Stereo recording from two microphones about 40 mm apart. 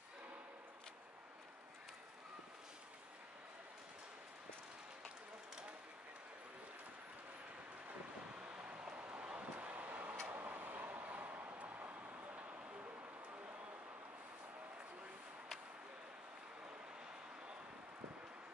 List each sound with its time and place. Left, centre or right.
8.4 s vehicle: right
10.3 s tick-tock: right
11.5 s vehicle: right
12.4 s a sound: right